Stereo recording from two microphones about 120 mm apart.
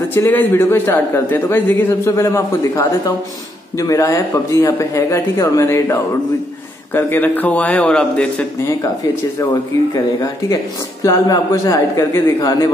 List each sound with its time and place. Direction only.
0.1 s a man's voice: 15° left (ahead or behind)
8.5 s speech: 20° left (ahead or behind)